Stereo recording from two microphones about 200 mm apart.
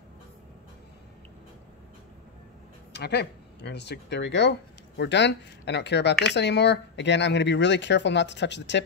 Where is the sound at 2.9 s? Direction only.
55° left (ahead or behind).